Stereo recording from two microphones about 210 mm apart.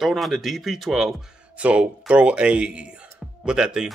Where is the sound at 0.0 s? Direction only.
Centre (ahead or behind).